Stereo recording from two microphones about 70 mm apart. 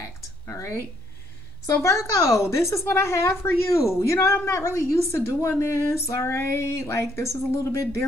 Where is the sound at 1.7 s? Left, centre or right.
Left.